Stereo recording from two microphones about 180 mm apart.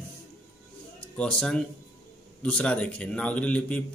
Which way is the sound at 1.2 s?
5° left (ahead or behind).